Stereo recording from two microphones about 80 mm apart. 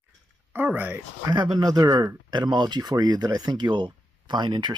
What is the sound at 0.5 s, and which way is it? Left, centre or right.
Speech, right.